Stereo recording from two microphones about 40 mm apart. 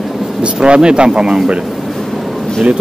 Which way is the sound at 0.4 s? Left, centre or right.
Right.